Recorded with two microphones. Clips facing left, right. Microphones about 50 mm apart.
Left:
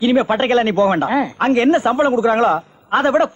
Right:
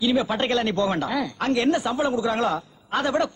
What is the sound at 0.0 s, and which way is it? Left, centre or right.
Speech, left.